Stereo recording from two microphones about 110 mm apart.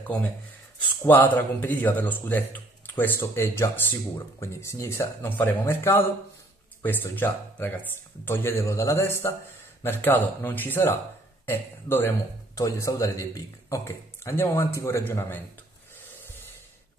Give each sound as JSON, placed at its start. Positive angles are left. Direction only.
{"t": 1.0, "sound": "a man's voice", "side_deg": 15}